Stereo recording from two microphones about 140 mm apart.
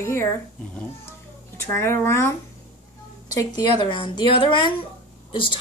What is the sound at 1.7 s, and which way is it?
A woman's voice, 15° left (ahead or behind).